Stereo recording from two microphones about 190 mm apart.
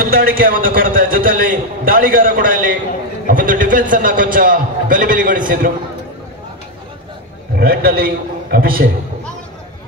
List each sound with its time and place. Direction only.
0.0 s a man's voice: 50° right (ahead or behind)
7.5 s a man's voice: 55° right (ahead or behind)